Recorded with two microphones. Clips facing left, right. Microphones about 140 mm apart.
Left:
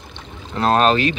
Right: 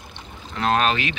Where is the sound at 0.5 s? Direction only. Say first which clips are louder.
Left 5 dB; 35° left (ahead or behind).